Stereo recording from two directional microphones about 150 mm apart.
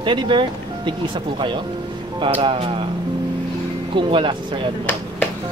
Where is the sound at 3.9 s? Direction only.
35° right (ahead or behind).